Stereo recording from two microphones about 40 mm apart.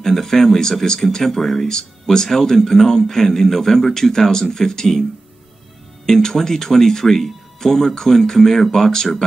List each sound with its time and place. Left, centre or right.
0.0 s speech: centre
6.0 s speech: centre